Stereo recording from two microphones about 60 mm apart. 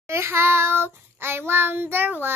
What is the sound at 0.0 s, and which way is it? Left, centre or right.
Child singing, right.